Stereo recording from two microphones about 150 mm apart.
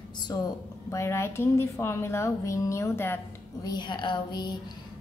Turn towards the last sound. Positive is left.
turn(degrees=30)  # may be behind; listen again after turning